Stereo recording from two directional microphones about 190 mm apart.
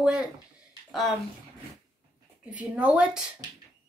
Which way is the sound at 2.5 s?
5° right (ahead or behind).